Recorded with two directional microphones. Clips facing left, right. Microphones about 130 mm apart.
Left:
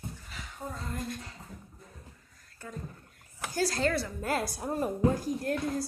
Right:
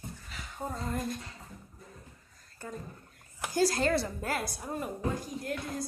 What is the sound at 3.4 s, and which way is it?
Speech, 15° right (ahead or behind).